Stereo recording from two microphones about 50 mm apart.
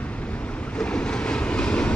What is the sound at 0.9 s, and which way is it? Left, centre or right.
Vehicle, centre.